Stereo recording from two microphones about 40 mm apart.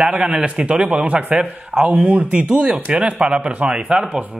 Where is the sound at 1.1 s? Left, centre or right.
Right.